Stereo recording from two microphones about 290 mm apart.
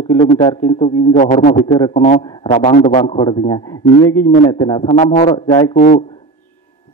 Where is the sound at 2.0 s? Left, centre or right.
Left.